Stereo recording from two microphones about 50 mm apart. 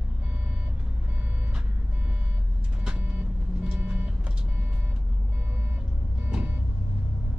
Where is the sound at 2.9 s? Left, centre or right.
Right.